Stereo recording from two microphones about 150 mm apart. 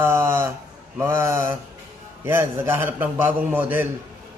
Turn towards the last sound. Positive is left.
turn(degrees=-15)  # may be behind; listen again after turning